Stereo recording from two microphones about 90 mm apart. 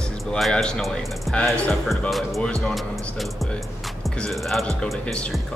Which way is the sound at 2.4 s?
5° left (ahead or behind).